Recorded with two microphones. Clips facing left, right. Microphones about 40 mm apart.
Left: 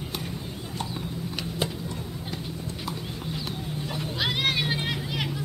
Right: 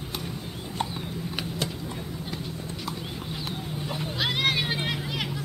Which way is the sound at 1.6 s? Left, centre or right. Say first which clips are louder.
Left 4 dB; centre.